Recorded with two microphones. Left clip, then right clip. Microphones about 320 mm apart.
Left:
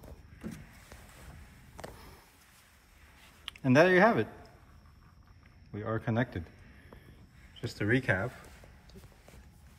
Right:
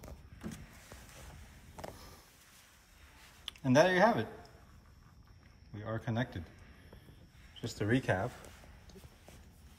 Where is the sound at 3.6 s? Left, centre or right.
Centre.